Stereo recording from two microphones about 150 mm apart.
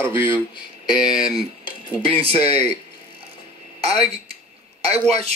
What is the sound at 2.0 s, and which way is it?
Speech, 40° right (ahead or behind).